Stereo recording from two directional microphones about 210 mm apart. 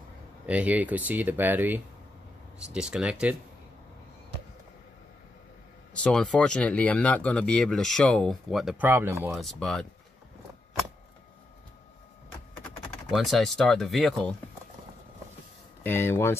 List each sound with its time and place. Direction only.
0.5 s speech: 5° right (ahead or behind)
5.9 s speech: 5° left (ahead or behind)
9.3 s speech: centre (ahead or behind)
13.1 s speech: centre (ahead or behind)
15.8 s speech: 10° left (ahead or behind)